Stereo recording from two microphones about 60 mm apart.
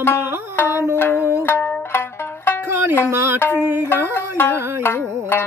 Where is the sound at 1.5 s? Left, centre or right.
Left.